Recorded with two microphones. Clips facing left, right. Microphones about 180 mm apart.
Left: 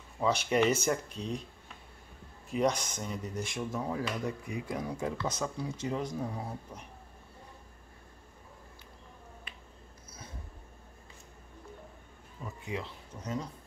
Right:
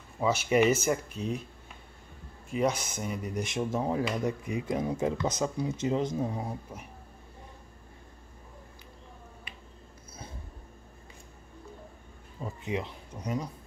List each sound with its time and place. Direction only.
0.2 s speech: 5° right (ahead or behind)
2.5 s speech: 5° right (ahead or behind); by 6.5 s 20° right (ahead or behind)
12.4 s speech: 20° right (ahead or behind)